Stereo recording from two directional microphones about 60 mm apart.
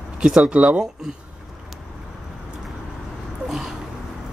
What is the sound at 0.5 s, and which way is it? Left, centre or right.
Speech, right.